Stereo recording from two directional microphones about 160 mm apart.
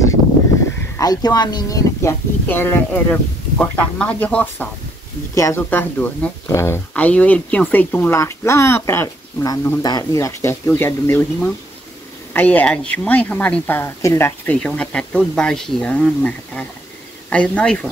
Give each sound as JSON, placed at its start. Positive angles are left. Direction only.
{"t": 0.9, "sound": "speech", "side_deg": 25}
{"t": 12.4, "sound": "speech", "side_deg": 10}